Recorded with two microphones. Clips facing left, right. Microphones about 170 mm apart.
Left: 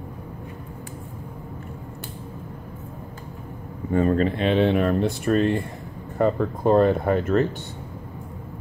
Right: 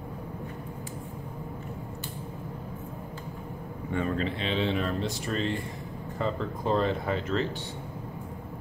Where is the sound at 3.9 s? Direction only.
40° left (ahead or behind).